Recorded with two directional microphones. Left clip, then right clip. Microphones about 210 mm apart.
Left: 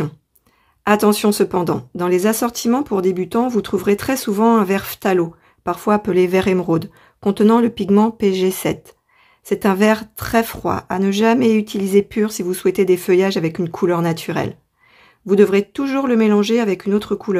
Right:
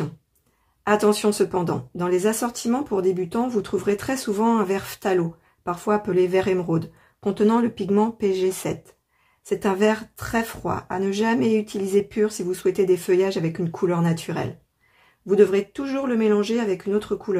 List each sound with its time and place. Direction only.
0.8 s speech: 30° left (ahead or behind)